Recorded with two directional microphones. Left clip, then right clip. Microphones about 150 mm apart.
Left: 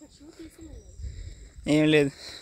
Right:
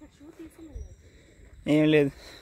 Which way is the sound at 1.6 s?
5° left (ahead or behind).